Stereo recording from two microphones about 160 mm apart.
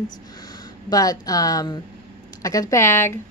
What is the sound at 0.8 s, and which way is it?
A woman's voice, 20° left (ahead or behind).